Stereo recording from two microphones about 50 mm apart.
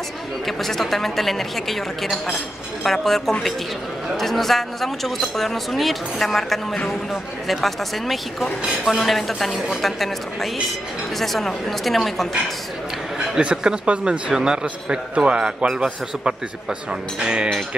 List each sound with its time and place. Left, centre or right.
0.5 s a woman's voice: centre
13.4 s a man's voice: right
17.2 s speech: centre